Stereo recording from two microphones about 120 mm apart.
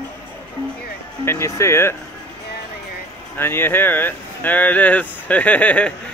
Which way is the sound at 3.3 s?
20° left (ahead or behind).